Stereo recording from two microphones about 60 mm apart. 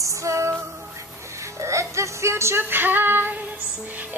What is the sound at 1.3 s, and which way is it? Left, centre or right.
Speech, right.